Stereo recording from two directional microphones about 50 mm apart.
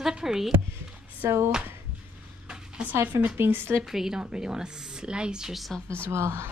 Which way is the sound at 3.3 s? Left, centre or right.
Right.